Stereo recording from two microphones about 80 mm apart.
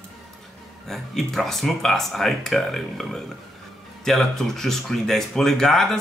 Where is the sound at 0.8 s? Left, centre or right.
Centre.